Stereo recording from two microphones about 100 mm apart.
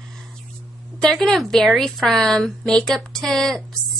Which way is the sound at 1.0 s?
5° left (ahead or behind).